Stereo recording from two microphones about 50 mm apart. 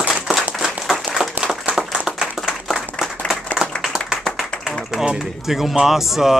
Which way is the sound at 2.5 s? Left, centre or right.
Centre.